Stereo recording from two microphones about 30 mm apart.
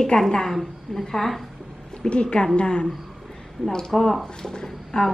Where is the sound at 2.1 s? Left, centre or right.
Left.